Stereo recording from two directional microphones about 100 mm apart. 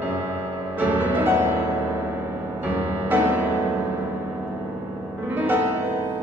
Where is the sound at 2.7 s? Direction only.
20° right (ahead or behind).